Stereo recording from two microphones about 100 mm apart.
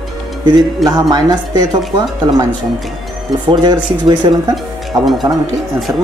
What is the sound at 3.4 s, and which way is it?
Speech, 50° right (ahead or behind).